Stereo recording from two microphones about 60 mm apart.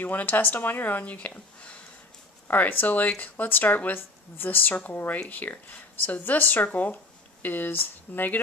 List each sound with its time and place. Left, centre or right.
0.0 s a woman's voice: left
2.4 s a woman's voice: left